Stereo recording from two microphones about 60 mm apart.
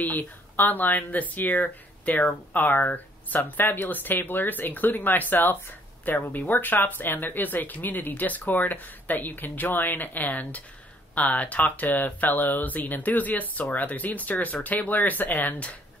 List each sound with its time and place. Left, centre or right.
0.0 s speech: left